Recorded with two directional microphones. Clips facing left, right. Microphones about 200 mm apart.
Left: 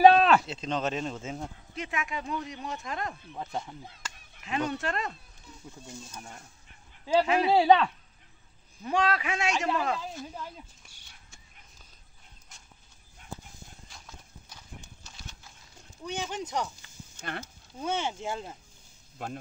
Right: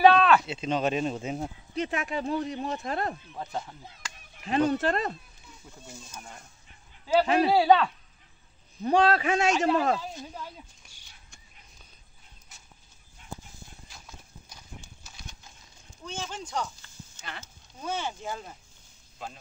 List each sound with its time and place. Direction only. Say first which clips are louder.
0.0 s a sound: left 1 dB; 35° left (ahead or behind)
0.5 s speech: right 3 dB; 10° right (ahead or behind)
1.4 s speech: right 6 dB; 35° right (ahead or behind)
4.5 s speech: right 6 dB; 35° right (ahead or behind)
7.2 s speech: right 2 dB; 40° right (ahead or behind)
7.5 s speech: left 1 dB; 20° left (ahead or behind)
8.8 s speech: right 5 dB; 35° right (ahead or behind)
15.0 s horse: even; 15° right (ahead or behind)
16.1 s speech: left 3 dB; 15° left (ahead or behind)
17.2 s speech: left 6 dB; 55° left (ahead or behind)
17.7 s speech: left 2 dB; 25° left (ahead or behind)
19.2 s speech: left 4 dB; 55° left (ahead or behind)